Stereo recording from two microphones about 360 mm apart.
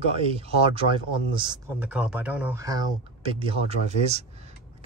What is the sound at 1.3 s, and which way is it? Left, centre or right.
Speech, centre.